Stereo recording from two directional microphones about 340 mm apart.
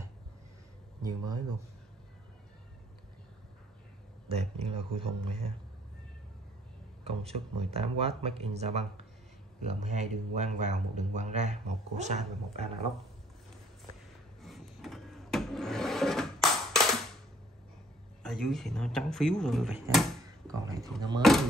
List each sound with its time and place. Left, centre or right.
1.0 s speech: centre
4.3 s speech: centre
7.1 s speech: centre
14.4 s filing: centre
18.2 s speech: centre